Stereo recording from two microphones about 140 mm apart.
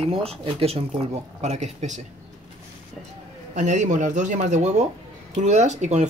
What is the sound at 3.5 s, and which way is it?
Speech, 60° right (ahead or behind).